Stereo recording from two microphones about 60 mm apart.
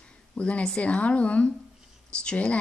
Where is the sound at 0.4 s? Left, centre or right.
Left.